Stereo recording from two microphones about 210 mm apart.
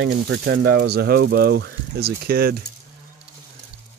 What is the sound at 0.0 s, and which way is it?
Speech, 50° right (ahead or behind).